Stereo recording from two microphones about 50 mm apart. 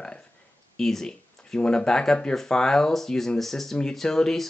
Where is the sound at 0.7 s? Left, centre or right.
Centre.